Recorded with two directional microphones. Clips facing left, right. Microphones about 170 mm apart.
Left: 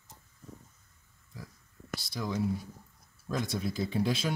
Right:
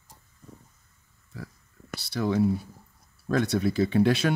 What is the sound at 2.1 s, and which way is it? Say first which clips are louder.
Speech: right 8 dB; 65° right (ahead or behind).